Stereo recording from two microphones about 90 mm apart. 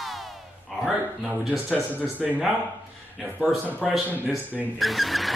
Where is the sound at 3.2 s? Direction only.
20° right (ahead or behind).